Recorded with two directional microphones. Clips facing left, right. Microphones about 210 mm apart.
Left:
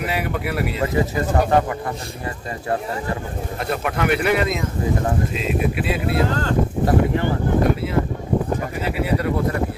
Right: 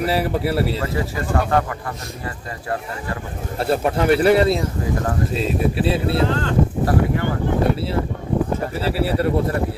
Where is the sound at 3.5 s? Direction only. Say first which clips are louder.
Right 5 dB; 30° right (ahead or behind).